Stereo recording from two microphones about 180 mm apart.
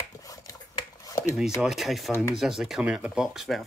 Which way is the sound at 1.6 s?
Centre (ahead or behind).